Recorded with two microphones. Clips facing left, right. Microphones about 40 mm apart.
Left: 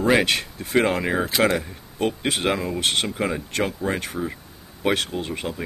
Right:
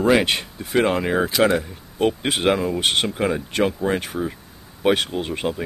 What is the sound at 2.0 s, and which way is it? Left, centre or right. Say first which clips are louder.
Speech: right 3 dB; centre.